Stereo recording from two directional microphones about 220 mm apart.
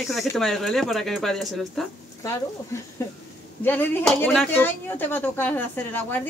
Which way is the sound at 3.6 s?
10° left (ahead or behind).